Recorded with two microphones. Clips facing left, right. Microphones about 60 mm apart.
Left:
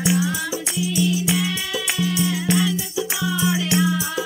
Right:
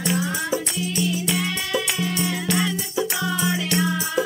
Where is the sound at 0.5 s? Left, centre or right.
Right.